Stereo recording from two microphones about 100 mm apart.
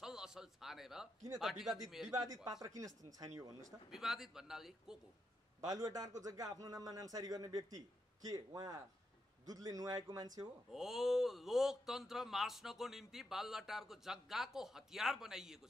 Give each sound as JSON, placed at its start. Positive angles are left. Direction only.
{"t": 0.0, "sound": "a sound", "side_deg": -5}
{"t": 1.4, "sound": "speech", "side_deg": 0}
{"t": 2.0, "sound": "a man's voice", "side_deg": -35}
{"t": 3.9, "sound": "speech", "side_deg": -5}
{"t": 5.7, "sound": "a man's voice", "side_deg": -35}
{"t": 10.7, "sound": "speech", "side_deg": -5}